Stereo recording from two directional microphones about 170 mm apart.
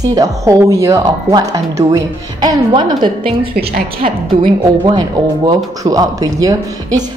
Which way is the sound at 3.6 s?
65° right (ahead or behind).